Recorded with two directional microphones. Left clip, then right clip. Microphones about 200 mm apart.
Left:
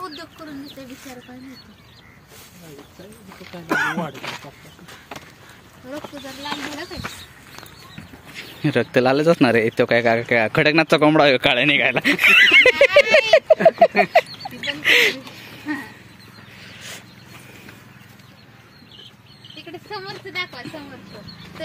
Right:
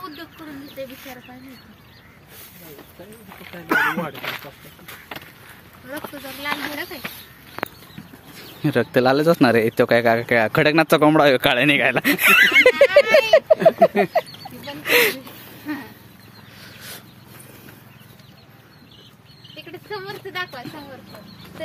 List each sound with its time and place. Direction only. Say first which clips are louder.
3.4 s speech: right 2 dB; 30° left (ahead or behind)
6.0 s speech: right 4 dB; 10° right (ahead or behind)
8.5 s speech: even; centre (ahead or behind)
12.4 s speech: left 1 dB; 10° left (ahead or behind)
13.2 s a sound: left 1 dB; 30° left (ahead or behind)
14.6 s fowl: left 2 dB; 5° left (ahead or behind)
15.6 s a sound: left 2 dB; 35° left (ahead or behind)